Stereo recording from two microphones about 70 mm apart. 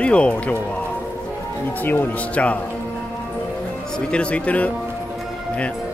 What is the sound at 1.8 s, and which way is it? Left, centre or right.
Speech, left.